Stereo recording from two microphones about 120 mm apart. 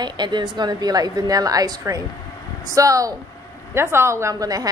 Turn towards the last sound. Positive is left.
turn(degrees=-30)  # may be behind; listen again after turning